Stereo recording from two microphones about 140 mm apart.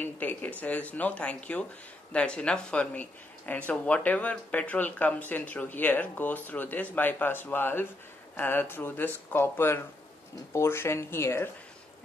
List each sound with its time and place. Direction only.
0.0 s speech: 10° left (ahead or behind)